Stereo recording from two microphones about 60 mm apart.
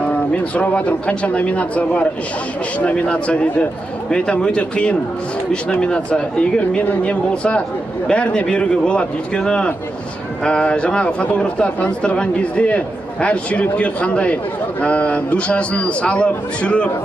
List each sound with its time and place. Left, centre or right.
0.0 s a man's voice: centre